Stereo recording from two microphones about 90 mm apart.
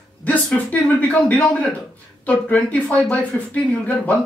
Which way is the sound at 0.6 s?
15° left (ahead or behind).